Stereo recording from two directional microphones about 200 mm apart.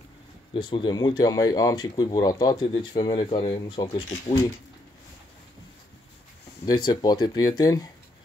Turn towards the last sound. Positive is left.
turn(degrees=20)  # may be behind; listen again after turning